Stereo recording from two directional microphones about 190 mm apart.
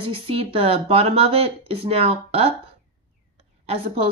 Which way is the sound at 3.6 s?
30° right (ahead or behind).